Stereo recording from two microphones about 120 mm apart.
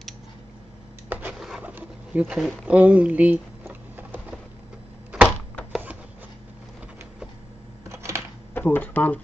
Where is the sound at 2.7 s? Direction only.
10° right (ahead or behind).